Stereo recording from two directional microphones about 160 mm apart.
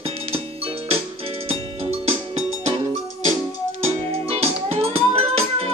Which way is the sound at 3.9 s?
40° right (ahead or behind).